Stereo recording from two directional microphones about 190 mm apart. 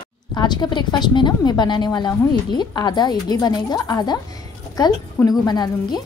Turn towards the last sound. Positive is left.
turn(degrees=20)  # may be behind; listen again after turning